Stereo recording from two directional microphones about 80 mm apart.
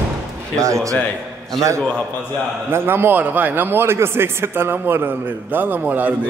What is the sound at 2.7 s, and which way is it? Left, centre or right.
A man's voice, right.